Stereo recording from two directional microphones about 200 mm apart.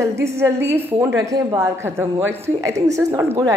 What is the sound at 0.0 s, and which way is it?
A woman's voice, 15° right (ahead or behind).